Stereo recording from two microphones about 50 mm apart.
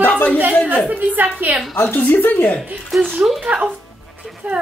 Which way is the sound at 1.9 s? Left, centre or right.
Left.